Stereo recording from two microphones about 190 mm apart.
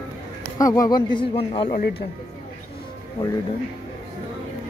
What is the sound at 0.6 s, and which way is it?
Speech, 20° left (ahead or behind).